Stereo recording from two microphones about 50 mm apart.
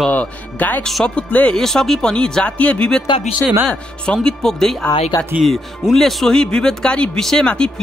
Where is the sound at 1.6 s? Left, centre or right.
Centre.